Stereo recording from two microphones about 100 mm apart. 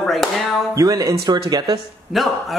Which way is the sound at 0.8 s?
35° right (ahead or behind).